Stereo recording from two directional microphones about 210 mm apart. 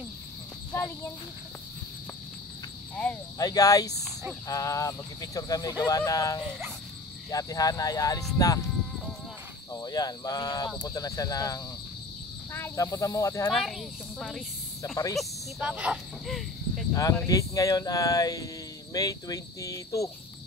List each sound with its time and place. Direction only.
0.7 s cricket: 15° left (ahead or behind)
3.3 s speech: 15° left (ahead or behind)
9.7 s speech: 15° left (ahead or behind)
13.5 s speech: centre (ahead or behind)
16.9 s speech: 15° left (ahead or behind)